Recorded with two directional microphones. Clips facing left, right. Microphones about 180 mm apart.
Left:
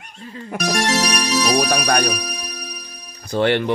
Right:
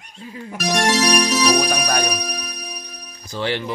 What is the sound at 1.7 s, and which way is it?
Speech, 60° left (ahead or behind).